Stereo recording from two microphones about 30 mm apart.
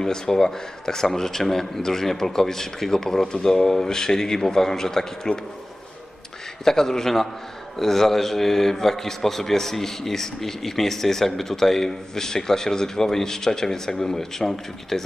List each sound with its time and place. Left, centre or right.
0.0 s a man's voice: centre
6.6 s a man's voice: centre